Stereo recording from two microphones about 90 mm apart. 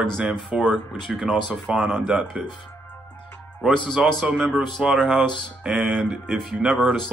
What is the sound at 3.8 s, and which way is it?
A man's voice, 5° right (ahead or behind).